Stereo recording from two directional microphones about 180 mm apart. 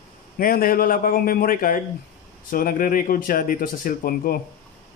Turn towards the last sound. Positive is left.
turn(degrees=55)  # may be behind; listen again after turning